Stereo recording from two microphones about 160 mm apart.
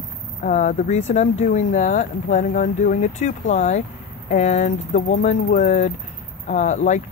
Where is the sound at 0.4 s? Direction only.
50° left (ahead or behind).